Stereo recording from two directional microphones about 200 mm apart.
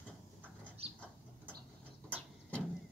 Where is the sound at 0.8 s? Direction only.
30° right (ahead or behind).